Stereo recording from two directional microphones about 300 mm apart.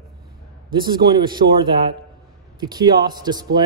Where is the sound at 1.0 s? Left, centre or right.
Centre.